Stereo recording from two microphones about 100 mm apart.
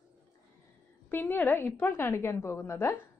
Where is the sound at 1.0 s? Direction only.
20° left (ahead or behind).